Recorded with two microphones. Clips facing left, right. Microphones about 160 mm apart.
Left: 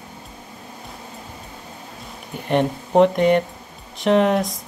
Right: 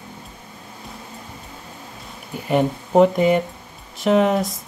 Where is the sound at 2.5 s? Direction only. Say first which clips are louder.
Right 1 dB; 5° right (ahead or behind).